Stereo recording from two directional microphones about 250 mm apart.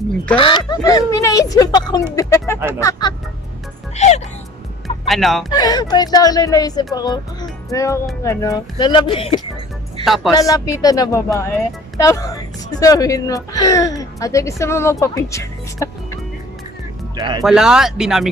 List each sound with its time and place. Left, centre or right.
0.4 s speech: centre
3.9 s speech: left
5.0 s speech: centre
5.5 s speech: centre
10.0 s speech: centre
10.3 s speech: centre
17.2 s speech: centre
17.5 s speech: centre